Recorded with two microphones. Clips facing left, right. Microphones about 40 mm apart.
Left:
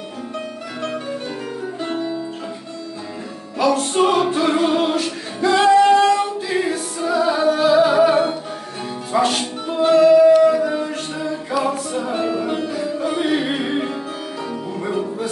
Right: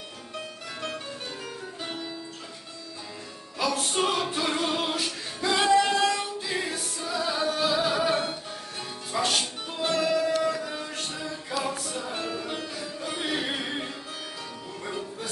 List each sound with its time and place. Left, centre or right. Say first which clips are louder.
1.8 s music: left 12 dB; centre
3.6 s music: left 10 dB; centre
3.9 s music: left 10 dB; centre
5.0 s singing: left 9 dB; centre
7.0 s music: left 11 dB; left